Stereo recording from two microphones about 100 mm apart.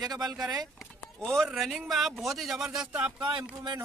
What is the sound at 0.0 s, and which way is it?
Speech, 40° right (ahead or behind).